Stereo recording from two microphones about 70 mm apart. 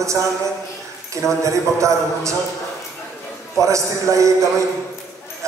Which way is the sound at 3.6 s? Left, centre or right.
Right.